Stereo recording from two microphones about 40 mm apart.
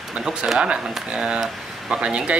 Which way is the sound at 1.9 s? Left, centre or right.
Right.